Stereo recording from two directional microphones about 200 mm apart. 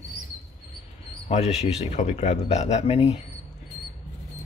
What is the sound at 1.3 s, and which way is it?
Speech, 35° left (ahead or behind).